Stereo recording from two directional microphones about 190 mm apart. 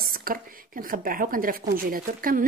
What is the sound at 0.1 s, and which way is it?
A woman's voice, 50° right (ahead or behind).